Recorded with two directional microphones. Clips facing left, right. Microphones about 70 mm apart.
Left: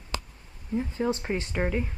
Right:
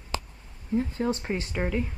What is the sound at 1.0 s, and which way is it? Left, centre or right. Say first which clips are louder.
Speech: even; centre.